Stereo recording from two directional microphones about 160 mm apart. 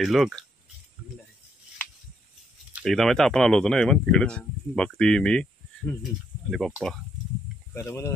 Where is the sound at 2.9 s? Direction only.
Centre (ahead or behind).